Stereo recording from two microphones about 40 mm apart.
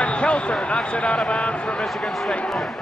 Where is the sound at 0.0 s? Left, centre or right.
Left.